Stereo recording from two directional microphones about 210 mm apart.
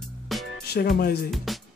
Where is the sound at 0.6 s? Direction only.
50° left (ahead or behind).